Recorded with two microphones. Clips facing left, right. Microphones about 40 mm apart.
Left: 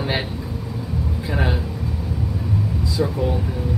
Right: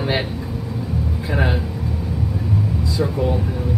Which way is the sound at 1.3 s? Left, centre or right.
Centre.